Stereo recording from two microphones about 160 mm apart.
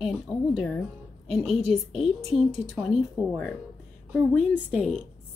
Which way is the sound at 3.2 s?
Centre (ahead or behind).